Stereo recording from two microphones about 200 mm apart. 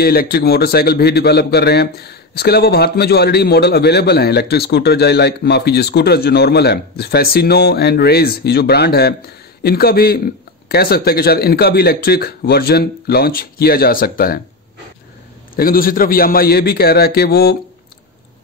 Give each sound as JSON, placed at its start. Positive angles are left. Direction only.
{"t": 0.0, "sound": "a man's voice", "side_deg": 50}
{"t": 15.5, "sound": "a man's voice", "side_deg": 45}